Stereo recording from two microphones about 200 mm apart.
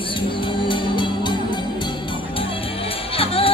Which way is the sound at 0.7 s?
25° left (ahead or behind).